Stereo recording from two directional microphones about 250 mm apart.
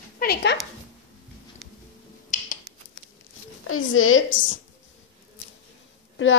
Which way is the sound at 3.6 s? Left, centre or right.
Left.